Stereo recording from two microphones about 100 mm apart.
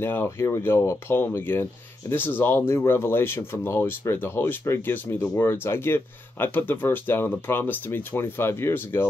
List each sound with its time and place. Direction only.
0.0 s speech: 25° left (ahead or behind)